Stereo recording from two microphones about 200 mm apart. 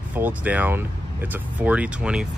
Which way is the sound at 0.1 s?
10° right (ahead or behind).